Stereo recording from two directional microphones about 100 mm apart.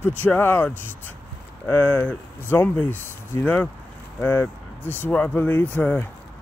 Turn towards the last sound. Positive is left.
turn(degrees=15)  # may be behind; listen again after turning